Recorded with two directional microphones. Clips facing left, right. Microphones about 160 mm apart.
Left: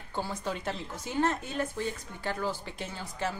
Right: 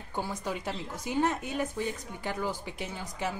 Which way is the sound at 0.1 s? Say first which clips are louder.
Even; 15° right (ahead or behind).